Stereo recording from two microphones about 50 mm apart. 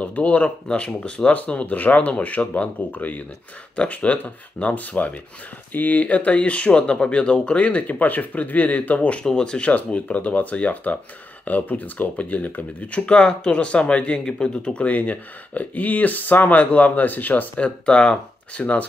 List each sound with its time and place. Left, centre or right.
0.0 s speech: left
0.7 s speech: left
9.2 s speech: centre; by 17.5 s left
17.6 s speech: left